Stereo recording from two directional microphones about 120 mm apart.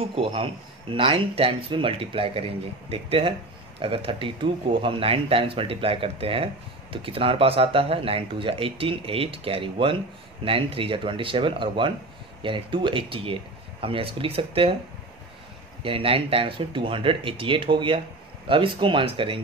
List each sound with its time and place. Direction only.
0.0 s speech: 55° right (ahead or behind)
15.8 s speech: 50° right (ahead or behind)